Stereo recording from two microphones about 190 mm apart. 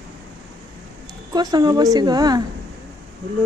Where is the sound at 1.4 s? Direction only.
20° right (ahead or behind).